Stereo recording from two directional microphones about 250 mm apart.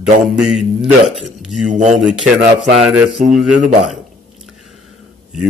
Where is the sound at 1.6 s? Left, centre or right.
Right.